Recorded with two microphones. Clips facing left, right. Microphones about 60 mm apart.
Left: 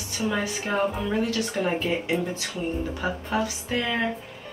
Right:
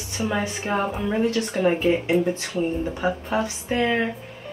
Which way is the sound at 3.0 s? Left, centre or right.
Centre.